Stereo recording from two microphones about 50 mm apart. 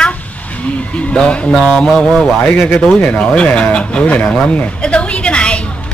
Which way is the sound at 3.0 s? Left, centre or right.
Left.